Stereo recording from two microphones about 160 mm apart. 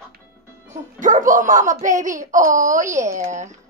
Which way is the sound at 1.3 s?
55° right (ahead or behind).